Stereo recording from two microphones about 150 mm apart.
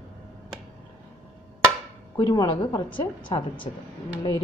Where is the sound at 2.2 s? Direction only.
25° left (ahead or behind).